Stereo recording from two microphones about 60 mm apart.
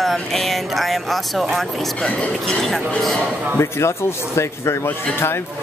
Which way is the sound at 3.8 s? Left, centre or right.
Left.